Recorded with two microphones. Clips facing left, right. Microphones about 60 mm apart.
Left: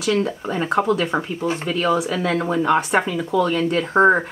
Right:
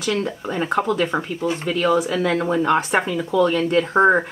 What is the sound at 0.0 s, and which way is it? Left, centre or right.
Speech, centre.